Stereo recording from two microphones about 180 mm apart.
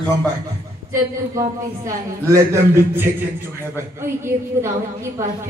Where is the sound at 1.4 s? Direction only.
15° right (ahead or behind).